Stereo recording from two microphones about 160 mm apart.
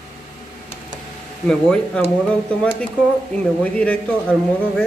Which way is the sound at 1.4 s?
5° left (ahead or behind).